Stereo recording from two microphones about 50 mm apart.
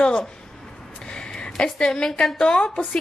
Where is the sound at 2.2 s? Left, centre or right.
Centre.